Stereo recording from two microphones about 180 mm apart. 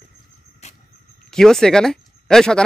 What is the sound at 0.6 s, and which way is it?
Vehicle, 40° left (ahead or behind).